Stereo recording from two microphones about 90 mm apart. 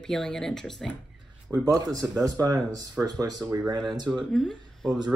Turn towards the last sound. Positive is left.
turn(degrees=5)  # may be behind; listen again after turning